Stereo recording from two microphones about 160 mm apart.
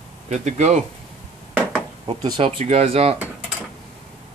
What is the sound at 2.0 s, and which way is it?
Speech, 30° right (ahead or behind).